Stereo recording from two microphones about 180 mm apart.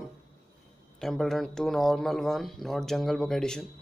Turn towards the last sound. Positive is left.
turn(degrees=5)  # may be behind; listen again after turning